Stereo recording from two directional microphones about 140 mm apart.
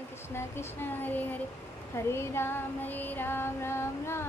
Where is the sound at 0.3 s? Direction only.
15° left (ahead or behind).